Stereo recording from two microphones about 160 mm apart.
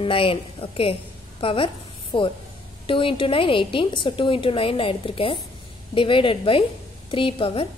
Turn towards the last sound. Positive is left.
turn(degrees=35)  # may be behind; listen again after turning